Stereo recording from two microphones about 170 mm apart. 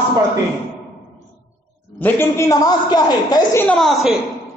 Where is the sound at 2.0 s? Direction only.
15° left (ahead or behind).